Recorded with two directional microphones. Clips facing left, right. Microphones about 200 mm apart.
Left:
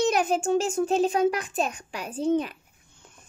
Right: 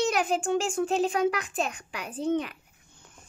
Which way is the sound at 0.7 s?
25° left (ahead or behind).